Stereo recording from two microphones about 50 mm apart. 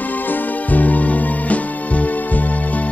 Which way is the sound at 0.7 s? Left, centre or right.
Left.